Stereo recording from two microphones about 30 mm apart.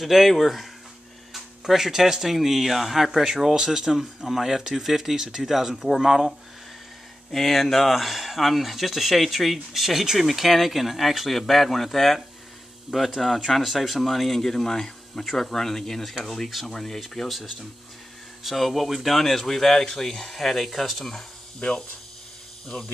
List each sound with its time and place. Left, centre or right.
0.0 s speech: centre
1.7 s speech: centre
7.2 s speech: centre
12.9 s speech: centre
13.5 s speech: centre
18.4 s speech: centre